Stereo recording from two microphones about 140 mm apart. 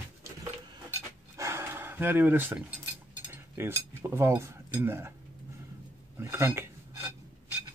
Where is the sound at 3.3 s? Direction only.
15° right (ahead or behind).